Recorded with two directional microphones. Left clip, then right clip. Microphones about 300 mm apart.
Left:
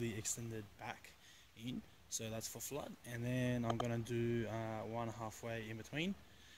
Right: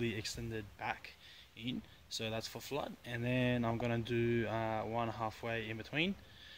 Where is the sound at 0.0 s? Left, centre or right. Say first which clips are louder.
Right 5 dB; centre.